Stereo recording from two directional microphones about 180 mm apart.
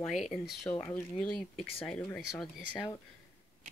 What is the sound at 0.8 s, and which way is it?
Speech, 15° left (ahead or behind).